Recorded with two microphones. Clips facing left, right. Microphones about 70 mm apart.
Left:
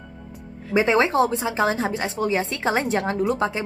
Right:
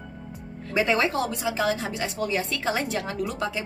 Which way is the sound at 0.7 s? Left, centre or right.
Left.